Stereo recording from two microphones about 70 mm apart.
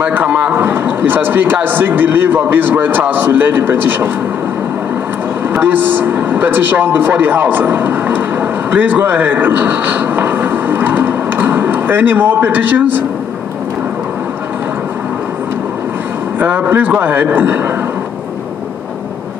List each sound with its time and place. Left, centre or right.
0.0 s speech: centre
0.6 s speech: right
5.5 s speech: right
16.3 s speech: right